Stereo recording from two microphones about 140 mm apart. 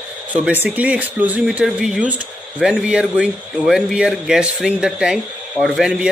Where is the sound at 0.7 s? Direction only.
10° right (ahead or behind).